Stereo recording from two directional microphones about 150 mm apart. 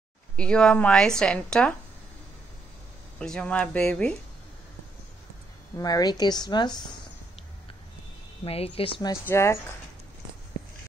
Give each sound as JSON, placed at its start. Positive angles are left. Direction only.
{"t": 0.4, "sound": "a woman's voice", "side_deg": 5}
{"t": 3.2, "sound": "speech", "side_deg": 5}
{"t": 5.8, "sound": "a woman's voice", "side_deg": 25}
{"t": 8.5, "sound": "speech", "side_deg": 40}
{"t": 9.3, "sound": "a woman's voice", "side_deg": 20}